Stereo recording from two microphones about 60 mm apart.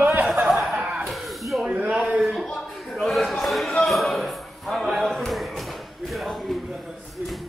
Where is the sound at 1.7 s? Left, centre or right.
Right.